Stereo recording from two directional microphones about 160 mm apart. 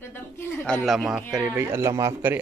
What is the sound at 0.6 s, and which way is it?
Speech, 5° left (ahead or behind).